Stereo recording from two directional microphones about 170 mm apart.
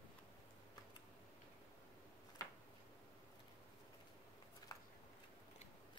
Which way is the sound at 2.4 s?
20° left (ahead or behind).